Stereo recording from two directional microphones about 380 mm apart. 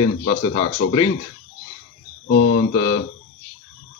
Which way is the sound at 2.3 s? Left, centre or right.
Left.